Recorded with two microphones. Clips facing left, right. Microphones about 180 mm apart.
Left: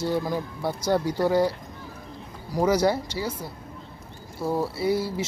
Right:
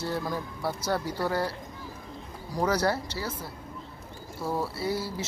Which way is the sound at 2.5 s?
10° left (ahead or behind).